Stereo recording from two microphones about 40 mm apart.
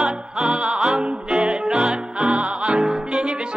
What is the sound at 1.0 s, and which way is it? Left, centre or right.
Music, centre.